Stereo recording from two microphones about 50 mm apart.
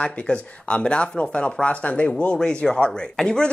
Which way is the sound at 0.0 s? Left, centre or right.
Left.